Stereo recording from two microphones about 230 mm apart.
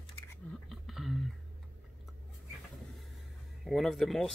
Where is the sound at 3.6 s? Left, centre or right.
Centre.